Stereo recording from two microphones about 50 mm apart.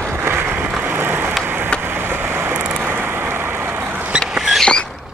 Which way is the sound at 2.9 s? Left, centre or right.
Right.